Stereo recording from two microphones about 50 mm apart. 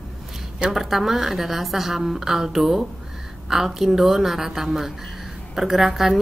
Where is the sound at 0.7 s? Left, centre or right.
Centre.